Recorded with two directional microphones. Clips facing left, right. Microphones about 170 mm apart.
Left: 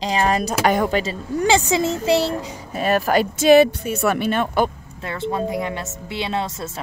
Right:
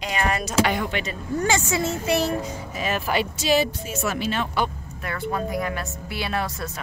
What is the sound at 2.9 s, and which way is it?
Speech, 45° left (ahead or behind).